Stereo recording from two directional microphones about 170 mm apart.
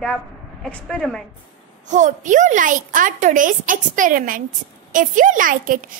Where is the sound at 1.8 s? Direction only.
45° right (ahead or behind).